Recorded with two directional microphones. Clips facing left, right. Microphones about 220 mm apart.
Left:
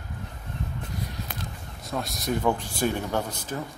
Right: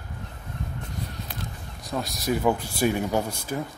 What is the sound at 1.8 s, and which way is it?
Speech, centre (ahead or behind).